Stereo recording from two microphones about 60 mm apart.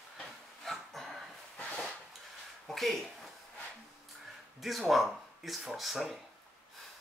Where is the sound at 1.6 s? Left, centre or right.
Centre.